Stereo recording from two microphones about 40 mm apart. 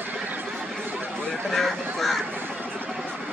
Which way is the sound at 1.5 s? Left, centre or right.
Centre.